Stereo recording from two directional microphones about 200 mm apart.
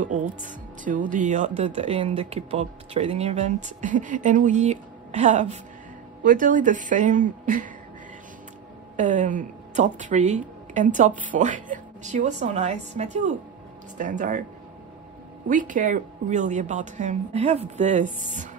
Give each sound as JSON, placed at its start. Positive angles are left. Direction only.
{"t": 0.0, "sound": "speech", "side_deg": -40}
{"t": 8.9, "sound": "speech", "side_deg": -40}
{"t": 15.4, "sound": "speech", "side_deg": -40}